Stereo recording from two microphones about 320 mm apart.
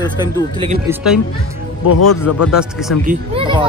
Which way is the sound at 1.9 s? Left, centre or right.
Left.